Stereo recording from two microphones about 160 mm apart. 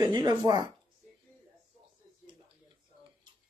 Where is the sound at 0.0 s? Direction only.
25° right (ahead or behind).